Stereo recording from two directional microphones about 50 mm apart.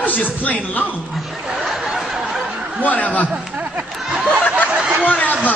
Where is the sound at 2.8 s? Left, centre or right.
Left.